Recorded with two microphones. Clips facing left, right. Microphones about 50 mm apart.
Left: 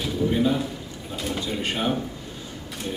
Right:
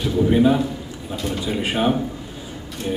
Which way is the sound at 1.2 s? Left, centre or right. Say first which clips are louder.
Right 2 dB; centre.